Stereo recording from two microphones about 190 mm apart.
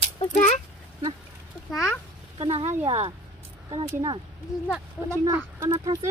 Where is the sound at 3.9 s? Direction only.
20° right (ahead or behind).